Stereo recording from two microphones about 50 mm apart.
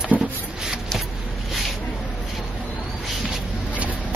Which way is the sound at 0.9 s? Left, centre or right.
Centre.